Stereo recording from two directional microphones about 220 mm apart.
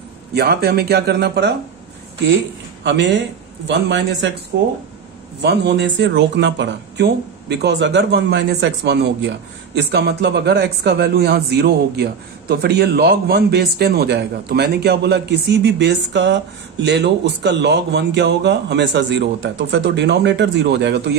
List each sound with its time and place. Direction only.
0.3 s speech: 45° right (ahead or behind)
2.8 s a man's voice: 55° right (ahead or behind)